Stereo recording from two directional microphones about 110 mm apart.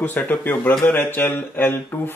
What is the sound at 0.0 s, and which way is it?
Speech, 15° left (ahead or behind).